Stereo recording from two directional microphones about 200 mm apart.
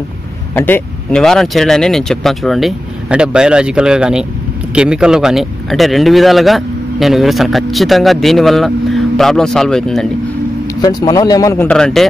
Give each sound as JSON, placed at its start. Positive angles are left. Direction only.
{"t": 0.6, "sound": "a man's voice", "side_deg": 10}
{"t": 10.8, "sound": "speech", "side_deg": 20}